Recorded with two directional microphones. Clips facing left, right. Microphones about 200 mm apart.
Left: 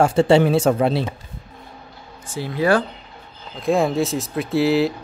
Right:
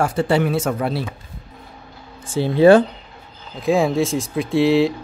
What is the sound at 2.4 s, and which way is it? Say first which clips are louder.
Speech: right 7 dB; 25° right (ahead or behind).